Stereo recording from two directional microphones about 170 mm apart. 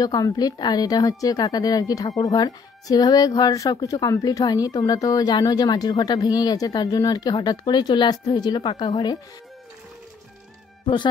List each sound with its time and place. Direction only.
0.0 s speech: 20° left (ahead or behind)